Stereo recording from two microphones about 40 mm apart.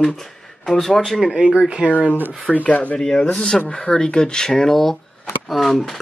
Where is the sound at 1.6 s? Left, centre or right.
Right.